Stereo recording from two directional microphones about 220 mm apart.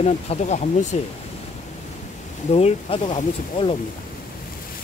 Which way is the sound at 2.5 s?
30° left (ahead or behind).